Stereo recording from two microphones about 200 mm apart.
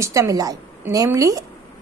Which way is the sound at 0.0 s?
15° right (ahead or behind).